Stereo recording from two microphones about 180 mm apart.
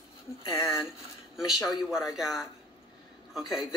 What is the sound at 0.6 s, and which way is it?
A woman's voice, centre (ahead or behind).